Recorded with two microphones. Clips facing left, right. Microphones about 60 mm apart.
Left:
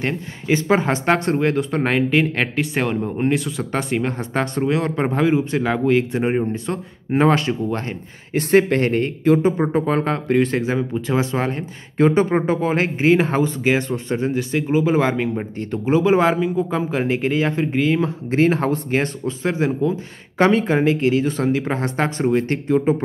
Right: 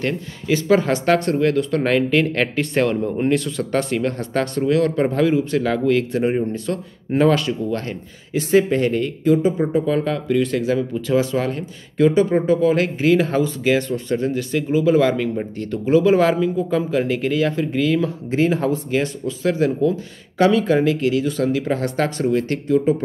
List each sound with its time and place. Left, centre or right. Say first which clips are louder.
0.0 s speech: right 1 dB; left
8.3 s speech: left 1 dB; left
18.3 s speech: left 1 dB; left
20.3 s speech: right 1 dB; left